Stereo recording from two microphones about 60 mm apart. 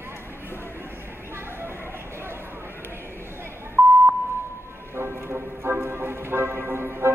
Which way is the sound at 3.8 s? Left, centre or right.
Right.